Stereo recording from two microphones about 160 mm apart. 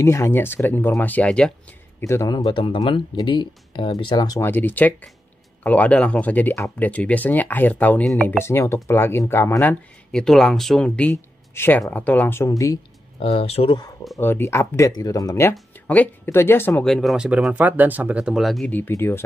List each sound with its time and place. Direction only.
0.0 s speech: 15° left (ahead or behind)
2.3 s speech: 30° left (ahead or behind); by 8.3 s 5° left (ahead or behind)
8.3 s speech: 15° left (ahead or behind)
13.2 s speech: 35° left (ahead or behind)
14.1 s speech: 15° left (ahead or behind)
18.7 s speech: 15° left (ahead or behind)